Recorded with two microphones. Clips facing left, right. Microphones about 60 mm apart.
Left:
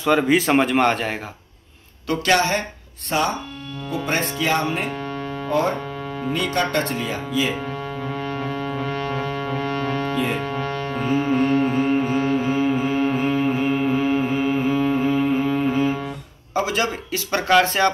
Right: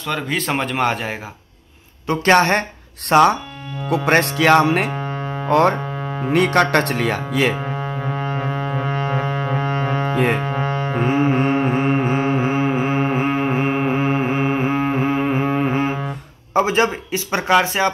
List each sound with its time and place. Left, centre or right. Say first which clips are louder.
0.0 s speech: left 6 dB; centre
2.0 s speech: right 5 dB; right
3.1 s speech: right 9 dB; right
3.9 s speech: right 7 dB; right
4.9 s music: right 2 dB; right
5.5 s speech: right 6 dB; right
7.6 s foghorn: right 3 dB; right
10.1 s music: right 4 dB; right
10.4 s music: right 3 dB; right
11.8 s music: right 1 dB; right
16.5 s speech: right 5 dB; right